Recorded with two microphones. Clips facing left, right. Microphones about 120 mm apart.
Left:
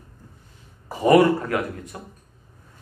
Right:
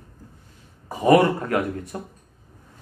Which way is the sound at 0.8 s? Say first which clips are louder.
Even; 20° right (ahead or behind).